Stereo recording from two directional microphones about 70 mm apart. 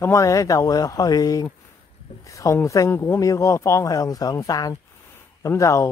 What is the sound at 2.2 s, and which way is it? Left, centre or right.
Speech, left.